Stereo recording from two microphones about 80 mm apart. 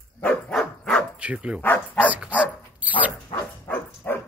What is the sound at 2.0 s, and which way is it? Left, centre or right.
Dog, centre.